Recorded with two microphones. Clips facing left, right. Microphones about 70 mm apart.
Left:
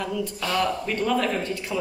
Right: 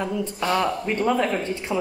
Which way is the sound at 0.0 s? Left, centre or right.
Right.